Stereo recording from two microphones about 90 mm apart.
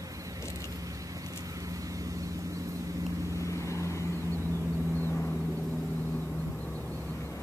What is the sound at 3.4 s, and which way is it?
Vehicle, 35° left (ahead or behind).